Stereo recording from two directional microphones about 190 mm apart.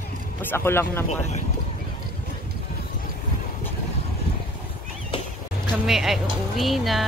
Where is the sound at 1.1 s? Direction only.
35° left (ahead or behind).